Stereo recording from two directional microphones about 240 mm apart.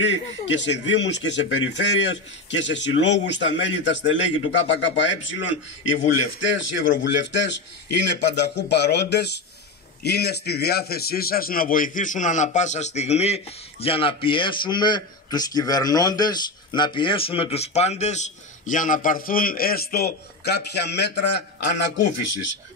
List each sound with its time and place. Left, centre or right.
0.0 s a man's voice: left
6.4 s a man's voice: left